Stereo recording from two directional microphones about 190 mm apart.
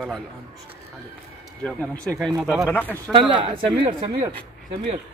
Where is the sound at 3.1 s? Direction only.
25° right (ahead or behind).